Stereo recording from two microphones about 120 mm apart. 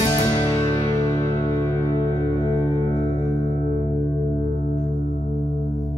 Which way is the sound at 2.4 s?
40° left (ahead or behind).